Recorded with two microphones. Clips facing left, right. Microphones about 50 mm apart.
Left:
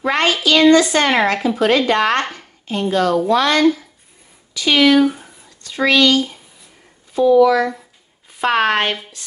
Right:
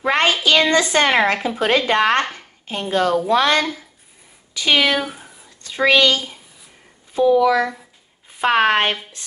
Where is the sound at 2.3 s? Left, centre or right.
Right.